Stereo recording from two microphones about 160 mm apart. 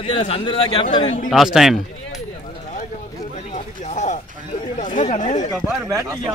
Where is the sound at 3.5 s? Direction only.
45° left (ahead or behind).